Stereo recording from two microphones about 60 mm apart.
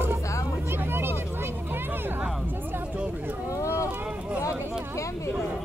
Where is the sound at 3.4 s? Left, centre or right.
Left.